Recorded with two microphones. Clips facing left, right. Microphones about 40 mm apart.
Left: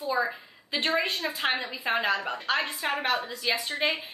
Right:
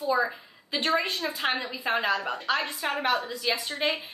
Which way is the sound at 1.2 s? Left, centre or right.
Centre.